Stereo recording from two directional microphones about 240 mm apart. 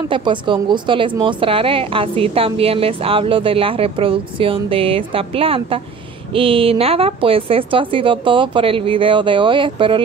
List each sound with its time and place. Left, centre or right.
0.1 s speech: centre